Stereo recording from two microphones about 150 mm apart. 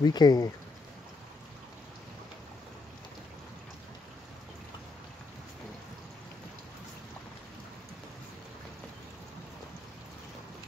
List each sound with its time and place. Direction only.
0.0 s speech: 25° left (ahead or behind)